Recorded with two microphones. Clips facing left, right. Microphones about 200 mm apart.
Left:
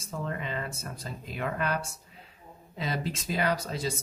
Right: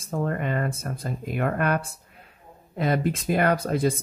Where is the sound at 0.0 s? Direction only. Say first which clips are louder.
Right 8 dB; 55° right (ahead or behind).